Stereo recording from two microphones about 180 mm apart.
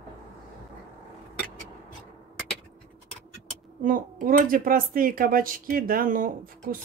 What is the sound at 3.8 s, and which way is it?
Speech, 50° right (ahead or behind).